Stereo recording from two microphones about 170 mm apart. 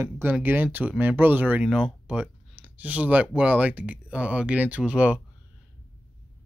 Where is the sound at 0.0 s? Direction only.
10° right (ahead or behind).